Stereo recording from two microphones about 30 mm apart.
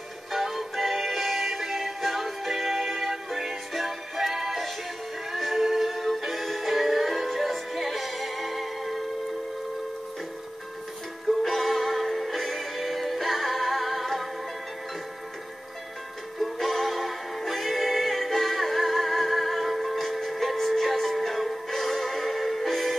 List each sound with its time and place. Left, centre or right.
0.3 s music: centre
11.2 s music: centre
16.3 s music: centre